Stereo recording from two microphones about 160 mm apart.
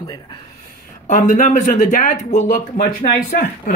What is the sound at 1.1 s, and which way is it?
Speech, 55° left (ahead or behind).